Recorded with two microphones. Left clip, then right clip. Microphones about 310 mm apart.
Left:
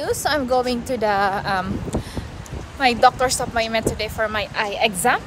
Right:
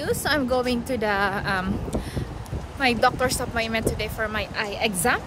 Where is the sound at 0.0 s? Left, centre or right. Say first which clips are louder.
Left 3 dB; centre.